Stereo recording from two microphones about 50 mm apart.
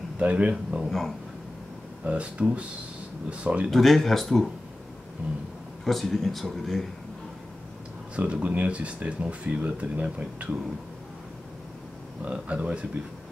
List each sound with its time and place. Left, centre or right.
0.2 s speech: right
0.8 s speech: centre
2.0 s speech: right
3.7 s speech: centre
5.2 s speech: right
5.9 s speech: centre
8.2 s speech: right
12.3 s speech: right